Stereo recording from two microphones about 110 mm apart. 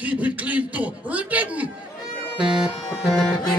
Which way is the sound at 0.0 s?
15° right (ahead or behind).